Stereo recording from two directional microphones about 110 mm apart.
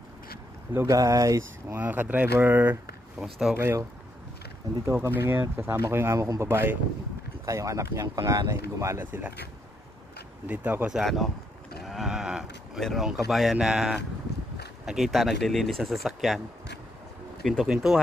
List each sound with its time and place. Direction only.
0.7 s speech: 30° right (ahead or behind)
1.8 s speech: 15° right (ahead or behind)
3.2 s speech: 5° right (ahead or behind)
3.5 s speech: 25° right (ahead or behind)
4.8 s speech: 25° right (ahead or behind)
10.4 s speech: 15° right (ahead or behind)
10.9 s speech: centre (ahead or behind)
11.8 s sheep: centre (ahead or behind)
14.9 s speech: centre (ahead or behind)
17.4 s speech: 5° left (ahead or behind)